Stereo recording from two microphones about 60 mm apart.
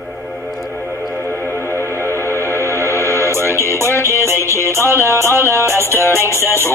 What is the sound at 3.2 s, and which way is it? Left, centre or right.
Music, right.